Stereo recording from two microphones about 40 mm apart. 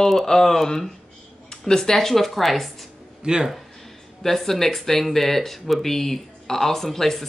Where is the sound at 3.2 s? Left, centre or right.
Centre.